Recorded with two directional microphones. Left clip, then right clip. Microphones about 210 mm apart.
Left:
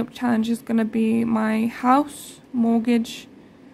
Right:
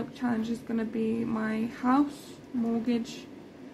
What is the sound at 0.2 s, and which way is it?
A woman's voice, 45° left (ahead or behind).